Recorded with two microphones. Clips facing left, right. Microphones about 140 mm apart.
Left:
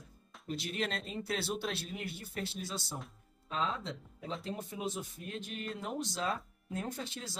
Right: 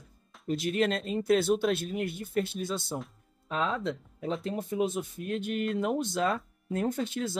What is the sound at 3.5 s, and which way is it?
Speech, 65° right (ahead or behind).